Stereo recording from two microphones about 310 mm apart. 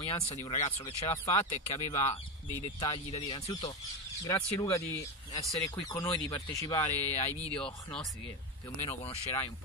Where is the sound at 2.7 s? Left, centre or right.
Centre.